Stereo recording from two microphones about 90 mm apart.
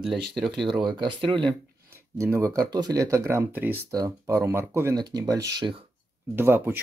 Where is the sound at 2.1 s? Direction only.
35° right (ahead or behind).